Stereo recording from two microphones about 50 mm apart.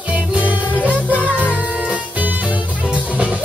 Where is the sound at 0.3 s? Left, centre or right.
Right.